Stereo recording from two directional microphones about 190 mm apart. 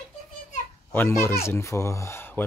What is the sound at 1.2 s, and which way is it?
A child's voice, 15° left (ahead or behind).